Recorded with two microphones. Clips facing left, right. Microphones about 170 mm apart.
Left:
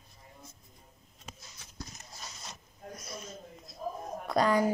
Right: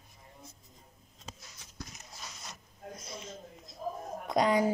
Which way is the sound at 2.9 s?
20° right (ahead or behind).